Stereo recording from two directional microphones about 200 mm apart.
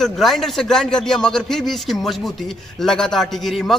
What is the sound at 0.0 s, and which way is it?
A man's voice, centre (ahead or behind).